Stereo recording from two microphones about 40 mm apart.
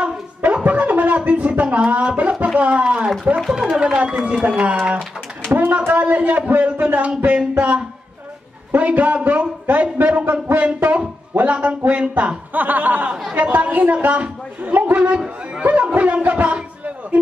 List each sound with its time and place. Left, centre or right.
0.0 s a sound: right
2.0 s speech: right
2.4 s a sound: right
3.4 s music: centre
4.2 s speech: right
5.5 s speech: right
5.9 s a man's voice: right
12.5 s a man's voice: right
15.1 s speech: centre
15.6 s a man's voice: right